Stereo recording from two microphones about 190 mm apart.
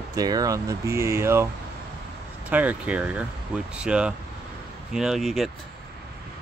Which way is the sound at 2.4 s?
10° right (ahead or behind).